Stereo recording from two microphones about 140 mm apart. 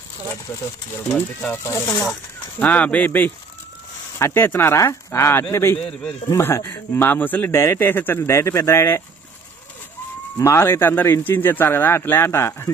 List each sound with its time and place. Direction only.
0.9 s a man's voice: 15° left (ahead or behind)
2.6 s a man's voice: 10° left (ahead or behind)
5.8 s a man's voice: 5° left (ahead or behind)
6.3 s a man's voice: 20° left (ahead or behind)
10.3 s a man's voice: 20° left (ahead or behind)